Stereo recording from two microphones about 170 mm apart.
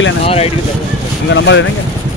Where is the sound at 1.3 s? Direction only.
90° left.